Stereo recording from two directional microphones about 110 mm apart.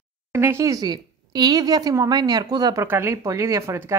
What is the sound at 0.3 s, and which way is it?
Speech, 25° right (ahead or behind).